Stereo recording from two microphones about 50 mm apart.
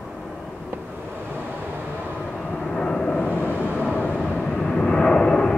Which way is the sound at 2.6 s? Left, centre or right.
Centre.